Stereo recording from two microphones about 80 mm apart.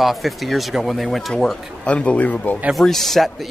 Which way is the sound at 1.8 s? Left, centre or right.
Centre.